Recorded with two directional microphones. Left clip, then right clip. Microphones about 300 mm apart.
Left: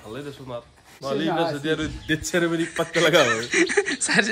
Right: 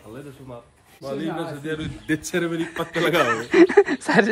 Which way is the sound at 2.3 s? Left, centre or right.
Centre.